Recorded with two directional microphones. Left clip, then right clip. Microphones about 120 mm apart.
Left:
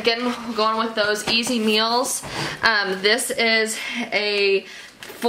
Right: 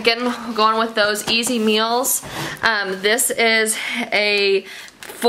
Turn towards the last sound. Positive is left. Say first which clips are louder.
# right 3 dB
turn(degrees=-35)  # may be behind; listen again after turning